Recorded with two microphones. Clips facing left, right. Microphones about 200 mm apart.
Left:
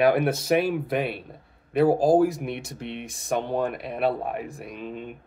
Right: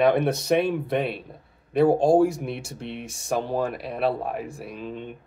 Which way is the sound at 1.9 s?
25° right (ahead or behind).